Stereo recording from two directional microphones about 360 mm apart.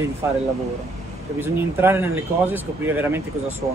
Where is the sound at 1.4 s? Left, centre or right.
Centre.